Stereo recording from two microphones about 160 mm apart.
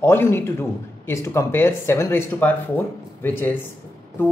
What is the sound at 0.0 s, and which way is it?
A man's voice, 15° left (ahead or behind).